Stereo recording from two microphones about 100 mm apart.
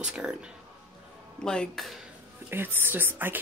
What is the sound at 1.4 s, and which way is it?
Speech, 5° left (ahead or behind).